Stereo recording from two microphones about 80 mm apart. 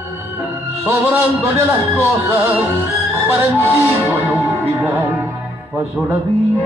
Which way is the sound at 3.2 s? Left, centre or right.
Right.